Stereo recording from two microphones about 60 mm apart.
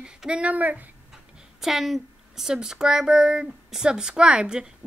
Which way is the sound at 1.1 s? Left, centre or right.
Centre.